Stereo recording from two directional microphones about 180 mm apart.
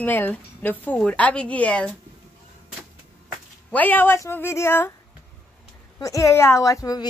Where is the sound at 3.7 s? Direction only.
10° left (ahead or behind).